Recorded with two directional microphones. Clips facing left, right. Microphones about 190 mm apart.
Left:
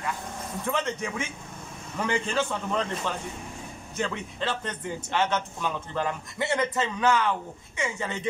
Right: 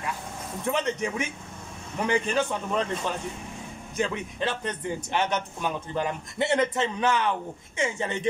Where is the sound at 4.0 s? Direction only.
15° right (ahead or behind).